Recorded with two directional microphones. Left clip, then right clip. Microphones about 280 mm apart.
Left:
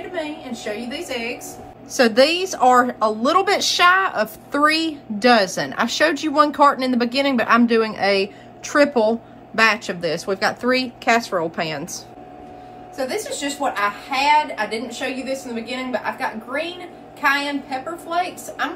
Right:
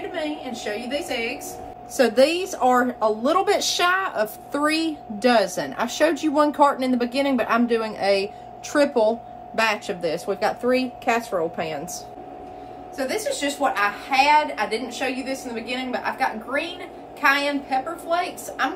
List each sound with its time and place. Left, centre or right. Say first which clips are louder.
0.1 s a woman's voice: left 1 dB; centre
2.0 s a woman's voice: left 3 dB; left
12.9 s a woman's voice: even; centre